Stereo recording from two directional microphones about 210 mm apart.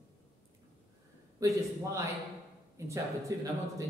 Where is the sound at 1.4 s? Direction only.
15° right (ahead or behind).